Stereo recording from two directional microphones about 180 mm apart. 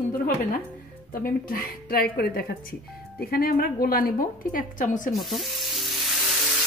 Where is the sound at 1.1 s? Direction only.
55° left (ahead or behind).